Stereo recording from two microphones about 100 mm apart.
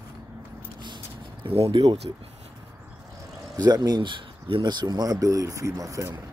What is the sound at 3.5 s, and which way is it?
Speech, 45° right (ahead or behind).